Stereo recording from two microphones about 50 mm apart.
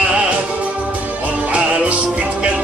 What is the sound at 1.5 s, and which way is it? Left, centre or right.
Music, right.